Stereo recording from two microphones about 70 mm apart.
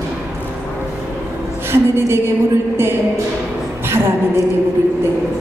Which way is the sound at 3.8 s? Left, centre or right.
Right.